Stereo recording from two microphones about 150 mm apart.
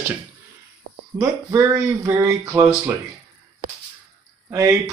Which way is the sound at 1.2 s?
20° right (ahead or behind).